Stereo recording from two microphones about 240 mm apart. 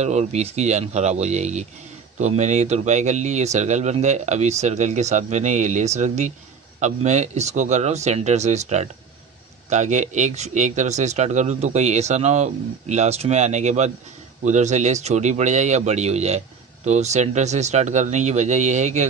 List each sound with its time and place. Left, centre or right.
0.0 s a man's voice: right